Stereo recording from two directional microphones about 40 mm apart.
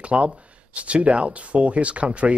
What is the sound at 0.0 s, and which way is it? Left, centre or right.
A man's voice, right.